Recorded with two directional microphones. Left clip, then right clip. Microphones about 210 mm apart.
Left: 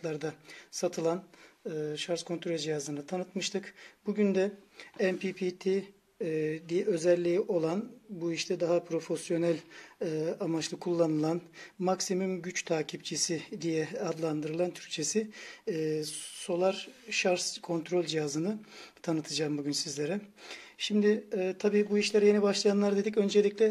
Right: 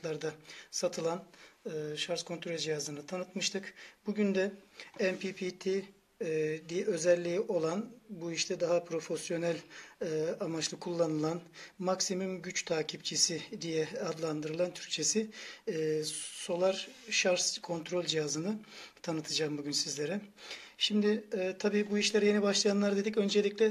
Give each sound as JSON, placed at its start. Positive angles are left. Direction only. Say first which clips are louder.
{"t": 0.0, "sound": "speech", "louder": "left 1 dB", "side_deg": 40}